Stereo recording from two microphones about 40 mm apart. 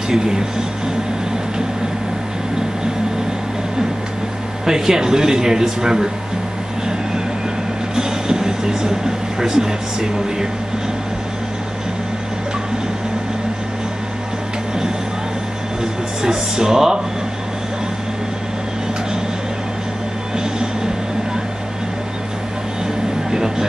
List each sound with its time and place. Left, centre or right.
0.1 s speech: centre
4.6 s speech: centre
7.9 s speech: centre
15.8 s speech: centre